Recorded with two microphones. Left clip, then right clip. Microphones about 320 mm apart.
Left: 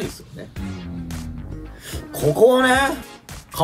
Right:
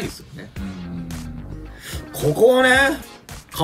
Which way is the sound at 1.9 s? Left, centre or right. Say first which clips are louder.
Left 1 dB; centre.